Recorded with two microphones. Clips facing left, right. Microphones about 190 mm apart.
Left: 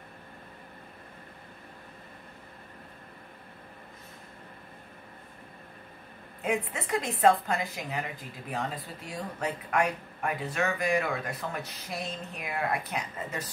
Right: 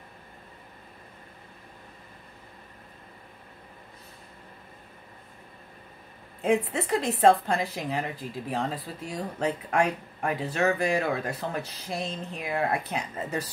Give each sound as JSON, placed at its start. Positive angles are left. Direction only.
{"t": 6.4, "sound": "speech", "side_deg": -30}